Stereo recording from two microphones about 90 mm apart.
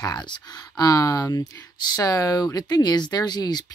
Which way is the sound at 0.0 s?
50° left (ahead or behind).